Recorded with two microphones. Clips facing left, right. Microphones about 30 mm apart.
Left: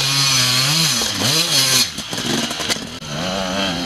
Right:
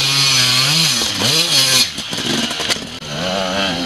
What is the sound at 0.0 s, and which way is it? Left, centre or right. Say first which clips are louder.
Chainsaw: right 3 dB; centre.